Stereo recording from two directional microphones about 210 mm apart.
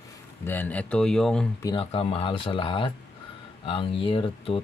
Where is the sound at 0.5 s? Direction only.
10° left (ahead or behind).